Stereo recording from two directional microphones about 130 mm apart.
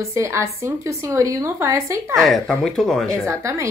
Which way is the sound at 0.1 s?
20° right (ahead or behind).